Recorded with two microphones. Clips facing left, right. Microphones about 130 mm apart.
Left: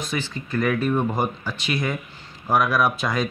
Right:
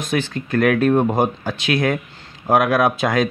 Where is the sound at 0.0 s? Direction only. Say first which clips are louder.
Right 6 dB; 55° right (ahead or behind).